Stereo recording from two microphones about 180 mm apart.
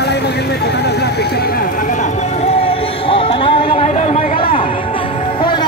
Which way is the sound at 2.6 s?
30° left (ahead or behind).